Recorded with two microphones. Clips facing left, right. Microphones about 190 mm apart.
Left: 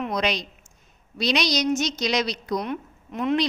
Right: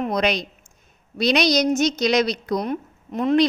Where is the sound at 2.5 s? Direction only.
40° right (ahead or behind).